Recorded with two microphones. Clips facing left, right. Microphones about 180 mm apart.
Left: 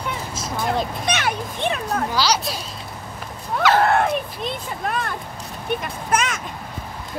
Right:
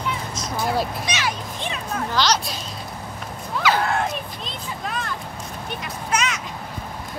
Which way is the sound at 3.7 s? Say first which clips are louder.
Left 5 dB; 60° left (ahead or behind).